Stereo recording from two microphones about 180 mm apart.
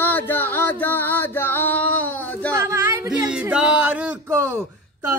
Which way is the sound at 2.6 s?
15° right (ahead or behind).